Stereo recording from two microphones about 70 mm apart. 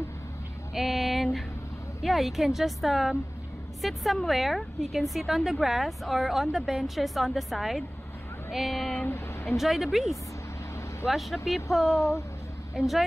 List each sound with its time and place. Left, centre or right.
0.7 s a sound: centre
2.0 s a woman's voice: centre
9.0 s speech: left
9.6 s a woman's voice: centre
12.0 s speech: left
12.7 s a woman's voice: centre